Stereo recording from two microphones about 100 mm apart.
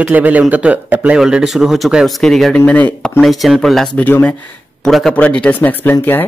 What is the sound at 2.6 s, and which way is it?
Speech, 15° left (ahead or behind).